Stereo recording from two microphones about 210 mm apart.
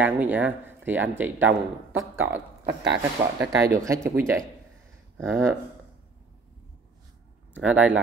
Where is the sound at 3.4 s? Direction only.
15° right (ahead or behind).